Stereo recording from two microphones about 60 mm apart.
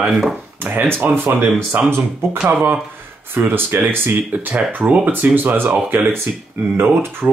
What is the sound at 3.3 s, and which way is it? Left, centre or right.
Speech, right.